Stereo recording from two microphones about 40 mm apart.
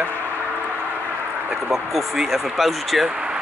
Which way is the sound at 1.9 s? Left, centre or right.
Centre.